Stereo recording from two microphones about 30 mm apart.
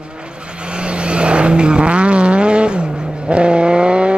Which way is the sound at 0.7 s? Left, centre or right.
Right.